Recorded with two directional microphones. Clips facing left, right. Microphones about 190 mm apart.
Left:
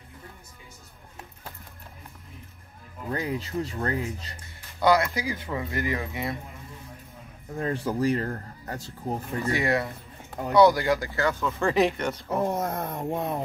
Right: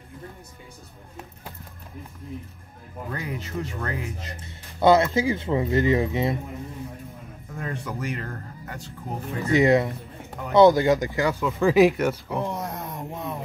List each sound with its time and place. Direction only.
3.1 s speech: 35° left (ahead or behind)
4.7 s speech: 25° right (ahead or behind)
7.5 s speech: 30° left (ahead or behind)
9.4 s speech: 20° right (ahead or behind)
12.4 s speech: 50° left (ahead or behind)